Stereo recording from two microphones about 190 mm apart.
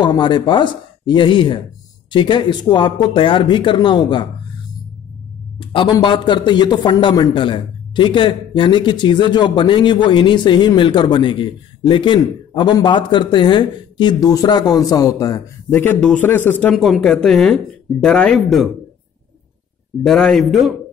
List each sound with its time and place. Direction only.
0.0 s speech: 25° left (ahead or behind)
5.6 s speech: 25° left (ahead or behind); by 16.7 s 10° left (ahead or behind)
16.7 s speech: centre (ahead or behind)
20.0 s speech: 5° left (ahead or behind)